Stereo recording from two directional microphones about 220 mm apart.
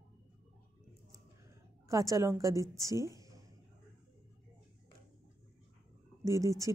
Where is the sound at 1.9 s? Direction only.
15° right (ahead or behind).